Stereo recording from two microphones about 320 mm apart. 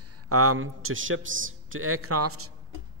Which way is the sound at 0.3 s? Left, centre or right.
Right.